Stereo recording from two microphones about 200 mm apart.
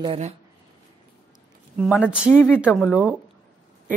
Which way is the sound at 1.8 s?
5° right (ahead or behind).